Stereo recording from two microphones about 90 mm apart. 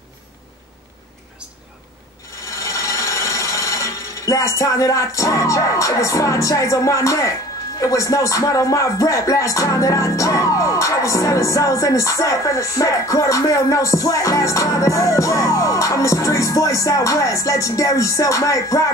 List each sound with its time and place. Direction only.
2.4 s rub: 40° left (ahead or behind)
7.8 s speech: 35° left (ahead or behind)